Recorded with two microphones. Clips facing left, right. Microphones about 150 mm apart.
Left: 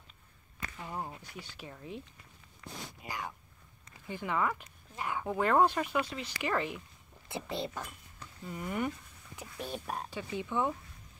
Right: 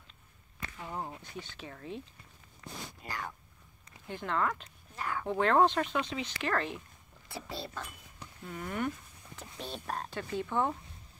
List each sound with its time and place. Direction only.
0.8 s speech: centre (ahead or behind)
3.0 s speech: 15° left (ahead or behind)
5.2 s speech: 5° left (ahead or behind)